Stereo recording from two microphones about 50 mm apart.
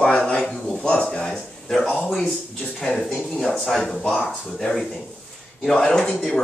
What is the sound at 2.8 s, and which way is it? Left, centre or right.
Speech, centre.